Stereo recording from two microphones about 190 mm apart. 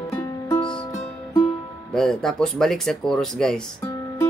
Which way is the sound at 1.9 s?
Centre (ahead or behind).